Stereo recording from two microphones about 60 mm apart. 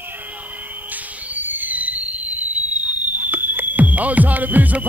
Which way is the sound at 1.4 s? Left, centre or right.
Right.